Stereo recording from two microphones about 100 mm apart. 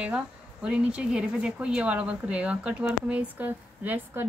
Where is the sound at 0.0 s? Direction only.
10° right (ahead or behind).